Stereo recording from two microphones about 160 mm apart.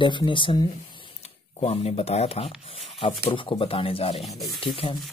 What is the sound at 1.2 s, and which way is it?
Speech, 40° left (ahead or behind).